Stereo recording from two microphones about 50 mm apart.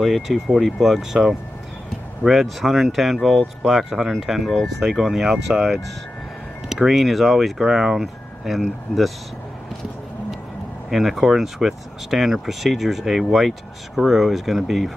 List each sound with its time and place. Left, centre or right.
0.0 s speech: centre
6.9 s speech: centre
10.9 s speech: centre